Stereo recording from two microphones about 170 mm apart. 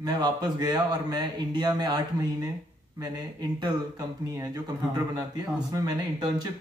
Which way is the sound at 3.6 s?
20° right (ahead or behind).